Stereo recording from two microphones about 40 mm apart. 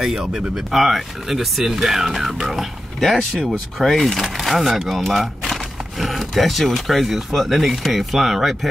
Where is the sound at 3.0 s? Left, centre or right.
Centre.